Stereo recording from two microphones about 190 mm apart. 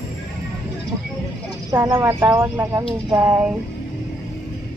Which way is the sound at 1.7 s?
15° right (ahead or behind).